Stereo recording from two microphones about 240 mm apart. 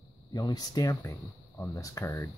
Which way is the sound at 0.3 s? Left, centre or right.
Centre.